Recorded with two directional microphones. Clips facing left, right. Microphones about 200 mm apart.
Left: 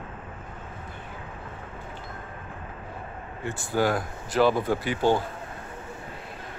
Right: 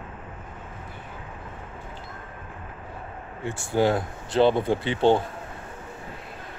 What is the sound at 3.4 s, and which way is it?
Speech, 25° right (ahead or behind).